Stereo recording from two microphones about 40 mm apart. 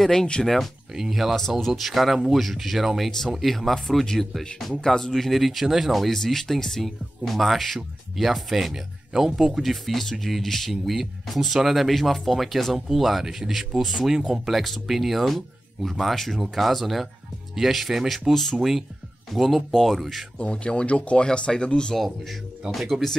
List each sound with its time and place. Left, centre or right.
0.0 s speech: centre
0.9 s speech: centre
3.1 s speech: centre
20.5 s speech: left
22.7 s speech: centre